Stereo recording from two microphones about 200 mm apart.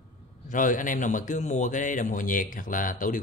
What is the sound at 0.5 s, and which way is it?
Speech, 40° left (ahead or behind).